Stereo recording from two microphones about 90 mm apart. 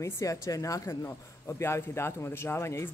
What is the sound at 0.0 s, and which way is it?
Speech, 35° left (ahead or behind).